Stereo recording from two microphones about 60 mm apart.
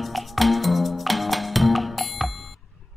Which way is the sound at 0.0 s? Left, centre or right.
Centre.